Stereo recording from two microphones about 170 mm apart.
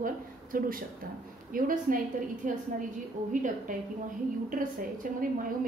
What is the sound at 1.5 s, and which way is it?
A woman's voice, 55° right (ahead or behind).